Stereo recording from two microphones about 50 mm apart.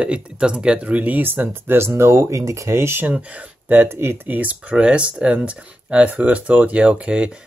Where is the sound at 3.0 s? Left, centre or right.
Right.